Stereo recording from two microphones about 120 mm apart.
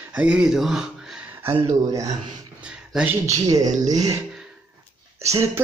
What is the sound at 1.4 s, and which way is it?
Speech, 20° right (ahead or behind).